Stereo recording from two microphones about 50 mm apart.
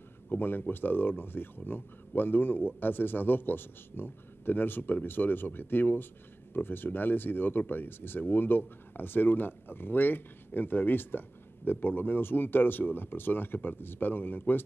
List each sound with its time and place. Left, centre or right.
0.3 s speech: left